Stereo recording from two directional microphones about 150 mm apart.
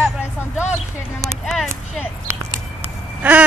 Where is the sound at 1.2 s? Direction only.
Centre (ahead or behind).